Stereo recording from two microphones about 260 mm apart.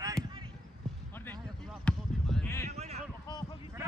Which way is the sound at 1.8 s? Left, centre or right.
Centre.